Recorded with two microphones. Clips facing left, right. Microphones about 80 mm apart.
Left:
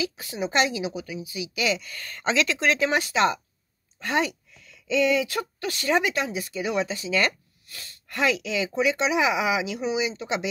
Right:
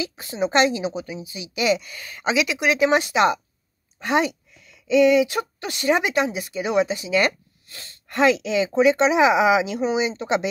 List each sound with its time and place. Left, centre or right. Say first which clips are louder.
0.0 s a woman's voice: right 4 dB; right